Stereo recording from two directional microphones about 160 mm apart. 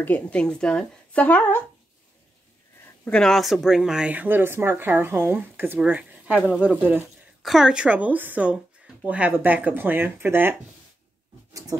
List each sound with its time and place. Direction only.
0.0 s speech: 10° left (ahead or behind)
2.8 s speech: 5° left (ahead or behind); by 10.5 s 15° right (ahead or behind)
11.7 s a sound: 20° right (ahead or behind)